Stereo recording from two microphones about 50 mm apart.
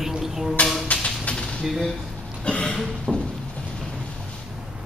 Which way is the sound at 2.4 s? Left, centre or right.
Left.